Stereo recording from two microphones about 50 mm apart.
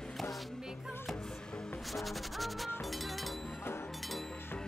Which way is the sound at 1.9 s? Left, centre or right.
Centre.